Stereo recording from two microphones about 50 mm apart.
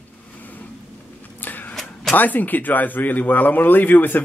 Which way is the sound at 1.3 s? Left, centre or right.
Left.